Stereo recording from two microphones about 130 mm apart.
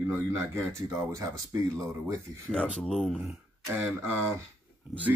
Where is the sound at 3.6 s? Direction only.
20° right (ahead or behind).